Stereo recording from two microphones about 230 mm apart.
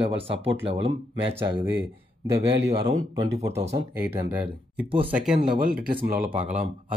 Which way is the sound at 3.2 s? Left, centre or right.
Centre.